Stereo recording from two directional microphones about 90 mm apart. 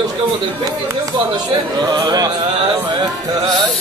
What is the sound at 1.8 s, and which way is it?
Music, 50° right (ahead or behind).